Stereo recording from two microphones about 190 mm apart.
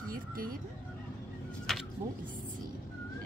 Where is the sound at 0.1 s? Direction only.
50° right (ahead or behind).